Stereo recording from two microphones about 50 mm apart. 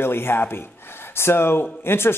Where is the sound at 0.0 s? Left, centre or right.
Left.